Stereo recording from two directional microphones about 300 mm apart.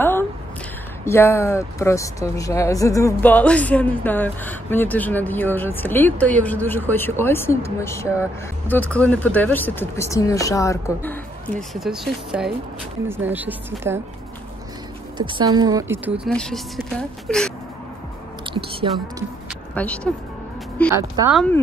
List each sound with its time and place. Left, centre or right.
1.0 s a woman's voice: centre
15.1 s a woman's voice: centre
16.3 s a woman's voice: centre
18.4 s speech: centre
19.7 s a woman's voice: centre
20.9 s a woman's voice: centre